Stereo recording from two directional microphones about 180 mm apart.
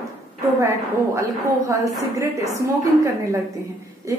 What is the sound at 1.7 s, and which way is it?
A woman's voice, 15° right (ahead or behind).